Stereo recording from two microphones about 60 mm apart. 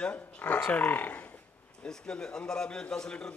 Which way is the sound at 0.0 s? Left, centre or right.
Left.